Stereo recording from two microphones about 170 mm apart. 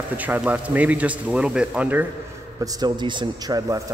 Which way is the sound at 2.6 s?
25° right (ahead or behind).